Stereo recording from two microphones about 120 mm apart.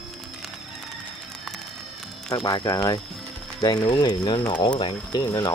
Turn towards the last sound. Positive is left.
turn(degrees=35)  # may be behind; listen again after turning